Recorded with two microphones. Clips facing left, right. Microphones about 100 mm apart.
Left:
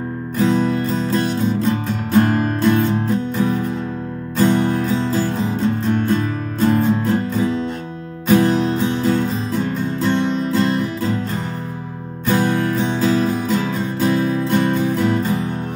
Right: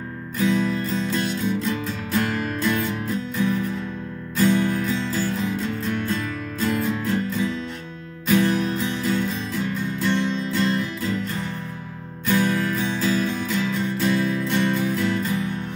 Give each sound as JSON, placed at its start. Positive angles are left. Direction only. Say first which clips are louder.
{"t": 0.4, "sound": "music", "louder": "left 5 dB", "side_deg": 35}